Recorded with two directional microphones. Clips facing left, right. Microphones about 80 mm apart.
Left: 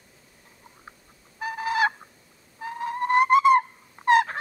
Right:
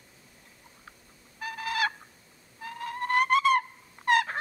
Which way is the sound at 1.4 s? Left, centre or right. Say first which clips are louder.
Left 6 dB; left.